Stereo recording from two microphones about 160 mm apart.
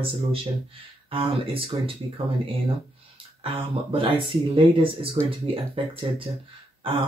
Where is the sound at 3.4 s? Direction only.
35° right (ahead or behind).